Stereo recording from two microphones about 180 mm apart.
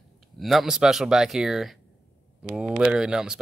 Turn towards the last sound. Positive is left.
turn(degrees=-5)  # may be behind; listen again after turning